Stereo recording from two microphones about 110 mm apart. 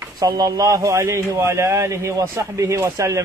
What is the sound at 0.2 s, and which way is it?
A man's voice, 35° right (ahead or behind).